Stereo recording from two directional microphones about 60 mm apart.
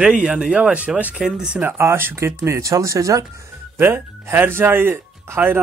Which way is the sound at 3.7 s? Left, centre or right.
Right.